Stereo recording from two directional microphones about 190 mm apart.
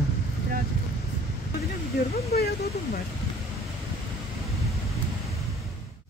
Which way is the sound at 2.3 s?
55° left (ahead or behind).